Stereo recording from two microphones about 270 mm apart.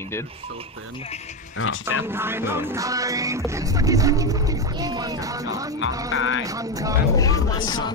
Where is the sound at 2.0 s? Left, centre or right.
Centre.